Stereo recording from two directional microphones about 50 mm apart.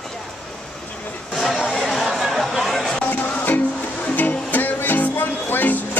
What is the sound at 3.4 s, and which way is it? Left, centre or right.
Music, left.